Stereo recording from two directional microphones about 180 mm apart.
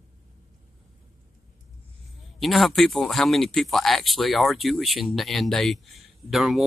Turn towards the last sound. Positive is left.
turn(degrees=0)  # may be behind; listen again after turning